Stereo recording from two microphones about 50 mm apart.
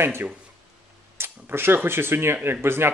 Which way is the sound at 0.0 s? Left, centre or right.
Right.